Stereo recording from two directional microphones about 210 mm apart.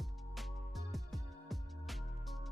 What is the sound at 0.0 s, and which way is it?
Music, centre (ahead or behind).